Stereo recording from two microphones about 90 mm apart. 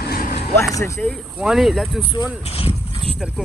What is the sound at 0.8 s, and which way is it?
Speech, 30° left (ahead or behind).